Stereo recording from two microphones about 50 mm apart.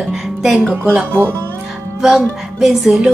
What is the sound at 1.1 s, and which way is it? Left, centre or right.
Speech, right.